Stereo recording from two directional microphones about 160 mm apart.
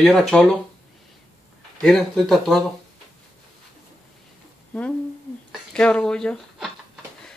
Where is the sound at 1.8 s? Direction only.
5° left (ahead or behind).